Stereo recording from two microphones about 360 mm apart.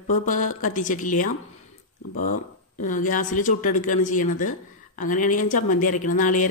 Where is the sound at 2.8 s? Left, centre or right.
Left.